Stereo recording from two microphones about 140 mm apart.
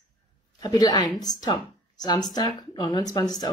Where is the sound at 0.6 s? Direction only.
25° left (ahead or behind).